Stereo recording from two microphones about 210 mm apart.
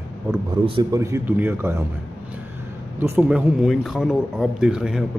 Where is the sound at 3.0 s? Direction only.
5° right (ahead or behind).